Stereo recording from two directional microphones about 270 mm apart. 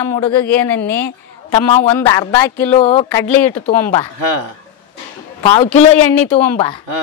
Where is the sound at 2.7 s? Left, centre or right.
Left.